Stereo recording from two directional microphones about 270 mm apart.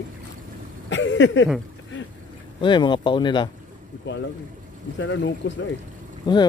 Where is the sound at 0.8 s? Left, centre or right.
Left.